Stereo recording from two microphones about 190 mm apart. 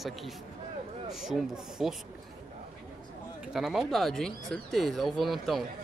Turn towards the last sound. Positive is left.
turn(degrees=0)  # may be behind; listen again after turning